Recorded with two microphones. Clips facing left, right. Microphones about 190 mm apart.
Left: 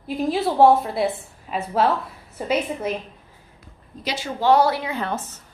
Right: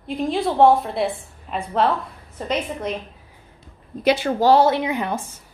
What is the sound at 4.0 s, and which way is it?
Speech, 60° right (ahead or behind).